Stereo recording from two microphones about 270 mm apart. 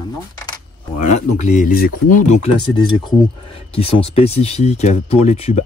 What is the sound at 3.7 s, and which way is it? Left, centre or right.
Speech, left.